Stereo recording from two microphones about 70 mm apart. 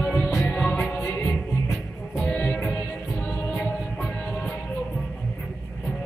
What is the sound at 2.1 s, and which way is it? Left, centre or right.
Music, left.